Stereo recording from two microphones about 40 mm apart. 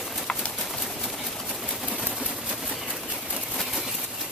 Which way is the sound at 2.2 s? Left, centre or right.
Right.